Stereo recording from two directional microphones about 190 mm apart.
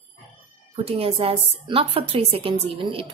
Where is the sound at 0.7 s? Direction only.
30° right (ahead or behind).